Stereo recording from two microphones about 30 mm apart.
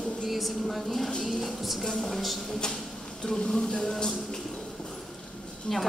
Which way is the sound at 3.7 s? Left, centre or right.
Left.